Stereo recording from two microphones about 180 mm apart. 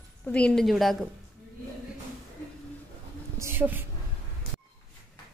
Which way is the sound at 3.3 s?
15° right (ahead or behind).